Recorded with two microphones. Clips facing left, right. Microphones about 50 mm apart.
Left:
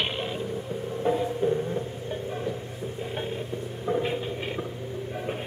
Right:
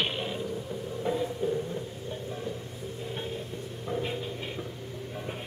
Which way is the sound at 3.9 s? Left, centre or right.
Left.